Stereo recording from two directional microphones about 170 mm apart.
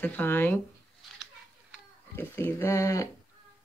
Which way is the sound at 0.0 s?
10° left (ahead or behind).